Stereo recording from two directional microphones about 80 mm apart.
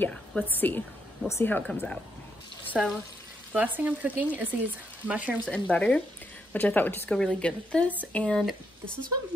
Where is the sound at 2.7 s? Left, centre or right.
Centre.